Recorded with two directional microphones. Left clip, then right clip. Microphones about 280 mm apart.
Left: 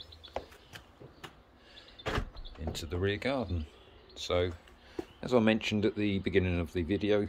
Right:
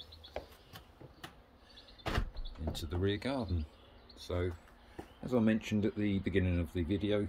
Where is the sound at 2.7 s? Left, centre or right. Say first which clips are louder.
Left 3 dB; centre.